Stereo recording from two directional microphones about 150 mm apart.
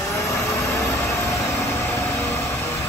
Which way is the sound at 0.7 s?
20° left (ahead or behind).